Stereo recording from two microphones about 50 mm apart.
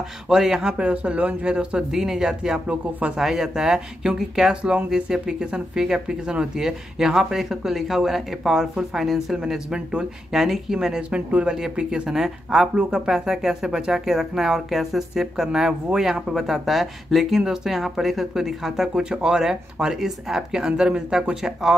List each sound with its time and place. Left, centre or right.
0.3 s speech: centre
0.7 s speech: right
1.9 s speech: centre
2.7 s speech: right
3.2 s speech: centre
11.0 s speech: right